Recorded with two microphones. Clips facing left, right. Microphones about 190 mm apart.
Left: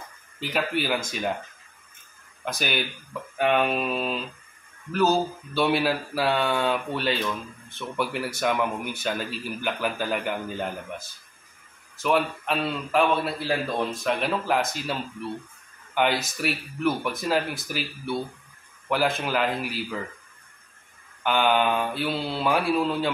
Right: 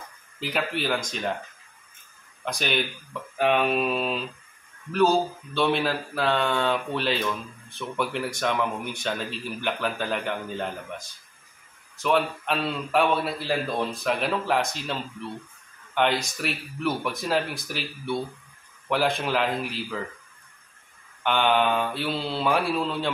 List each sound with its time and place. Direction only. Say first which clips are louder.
0.4 s speech: left 1 dB; centre (ahead or behind)
2.4 s speech: right 1 dB; 5° left (ahead or behind)
21.2 s speech: even; centre (ahead or behind)